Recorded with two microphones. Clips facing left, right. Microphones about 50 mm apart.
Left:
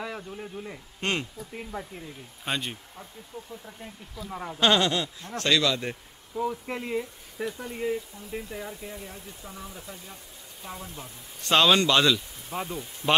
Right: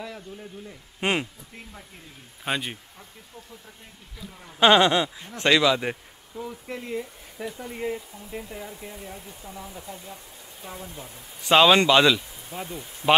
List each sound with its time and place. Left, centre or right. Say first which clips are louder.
0.0 s a sound: left 2 dB; centre
1.0 s speech: right 4 dB; centre
2.4 s speech: right 3 dB; centre
4.6 s speech: right 6 dB; centre
6.3 s speech: left 5 dB; centre
7.0 s speech: left 2 dB; centre
11.5 s speech: right 4 dB; centre
12.4 s speech: left 3 dB; centre